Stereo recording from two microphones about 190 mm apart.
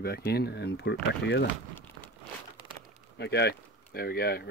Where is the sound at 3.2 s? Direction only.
60° left (ahead or behind).